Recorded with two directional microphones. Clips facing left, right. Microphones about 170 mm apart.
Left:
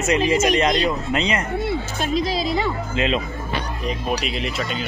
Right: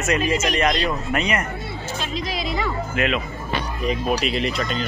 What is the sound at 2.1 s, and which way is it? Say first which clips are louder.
Speech: left 6 dB; 35° left (ahead or behind).